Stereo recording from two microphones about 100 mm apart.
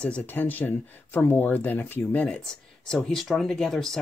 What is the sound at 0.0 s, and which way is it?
Speech, 15° left (ahead or behind).